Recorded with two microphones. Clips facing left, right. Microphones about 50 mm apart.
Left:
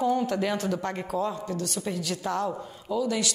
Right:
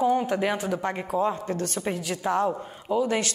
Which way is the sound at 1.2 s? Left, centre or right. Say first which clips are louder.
Right 3 dB; right.